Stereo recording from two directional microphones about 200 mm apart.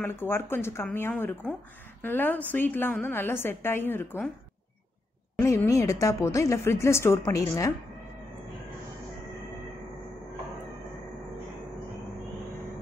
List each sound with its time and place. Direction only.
0.0 s speech: 10° left (ahead or behind)
5.4 s speech: 15° left (ahead or behind)